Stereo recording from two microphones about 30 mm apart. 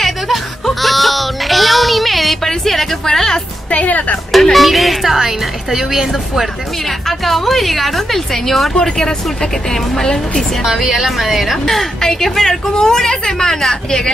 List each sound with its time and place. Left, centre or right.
0.0 s music: centre
3.7 s speech: left
4.3 s a woman's voice: centre
7.1 s a woman's voice: centre
8.7 s a woman's voice: left
10.8 s a woman's voice: centre
12.0 s a woman's voice: centre